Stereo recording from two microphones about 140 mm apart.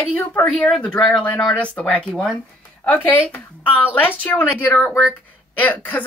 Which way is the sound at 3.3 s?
15° left (ahead or behind).